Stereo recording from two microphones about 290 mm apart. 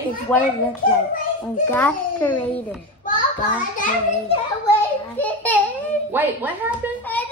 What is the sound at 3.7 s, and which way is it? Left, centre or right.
Speech, left.